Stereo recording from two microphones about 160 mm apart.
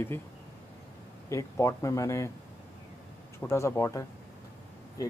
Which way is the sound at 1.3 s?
20° left (ahead or behind).